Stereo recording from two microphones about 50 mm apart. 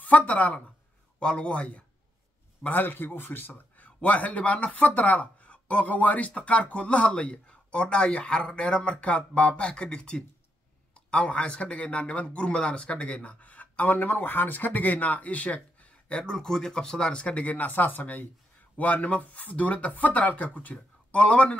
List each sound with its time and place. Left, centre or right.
0.0 s speech: left
1.2 s a man's voice: left
2.6 s a man's voice: left
16.1 s a man's voice: centre